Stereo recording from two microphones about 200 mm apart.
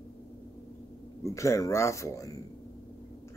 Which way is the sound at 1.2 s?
15° left (ahead or behind).